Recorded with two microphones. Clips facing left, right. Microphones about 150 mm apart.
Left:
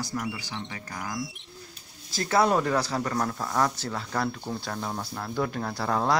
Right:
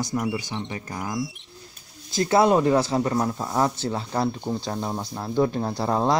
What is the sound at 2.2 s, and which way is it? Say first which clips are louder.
Speech: right 5 dB; 25° right (ahead or behind).